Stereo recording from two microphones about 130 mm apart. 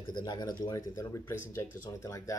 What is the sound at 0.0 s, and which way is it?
Speech, 35° left (ahead or behind).